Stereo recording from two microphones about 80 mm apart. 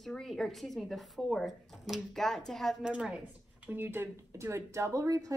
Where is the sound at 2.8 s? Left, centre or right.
Centre.